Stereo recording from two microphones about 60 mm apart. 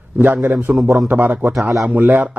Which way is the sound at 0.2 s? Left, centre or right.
Right.